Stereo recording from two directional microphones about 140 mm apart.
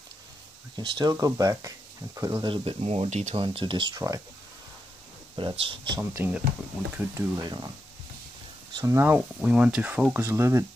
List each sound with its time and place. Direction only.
0.7 s speech: 30° right (ahead or behind)
2.4 s speech: 40° right (ahead or behind)
3.4 s speech: 35° right (ahead or behind)
3.9 s speech: 25° right (ahead or behind)
5.3 s speech: 35° right (ahead or behind)
5.9 s speech: 15° right (ahead or behind)
8.7 s speech: 20° right (ahead or behind)